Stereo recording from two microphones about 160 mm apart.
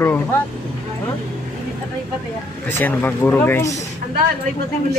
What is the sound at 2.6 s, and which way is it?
Speech, 15° left (ahead or behind).